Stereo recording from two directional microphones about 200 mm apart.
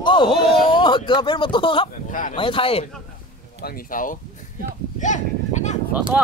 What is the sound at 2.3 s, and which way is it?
Speech, 25° left (ahead or behind).